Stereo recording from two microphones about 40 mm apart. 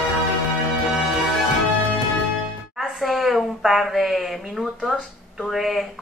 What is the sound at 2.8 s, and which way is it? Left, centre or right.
A woman's voice, centre.